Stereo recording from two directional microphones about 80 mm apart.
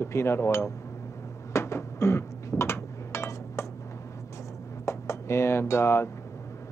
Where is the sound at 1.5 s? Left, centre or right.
Left.